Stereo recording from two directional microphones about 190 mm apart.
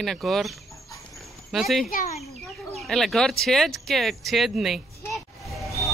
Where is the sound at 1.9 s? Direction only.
45° left (ahead or behind).